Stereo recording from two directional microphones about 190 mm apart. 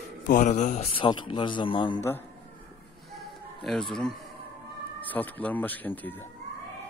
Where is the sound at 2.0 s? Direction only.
10° left (ahead or behind).